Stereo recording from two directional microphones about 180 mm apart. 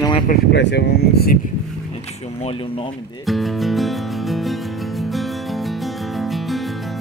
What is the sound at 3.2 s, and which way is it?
Music, centre (ahead or behind).